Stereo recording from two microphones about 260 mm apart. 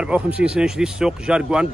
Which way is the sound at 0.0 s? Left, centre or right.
Centre.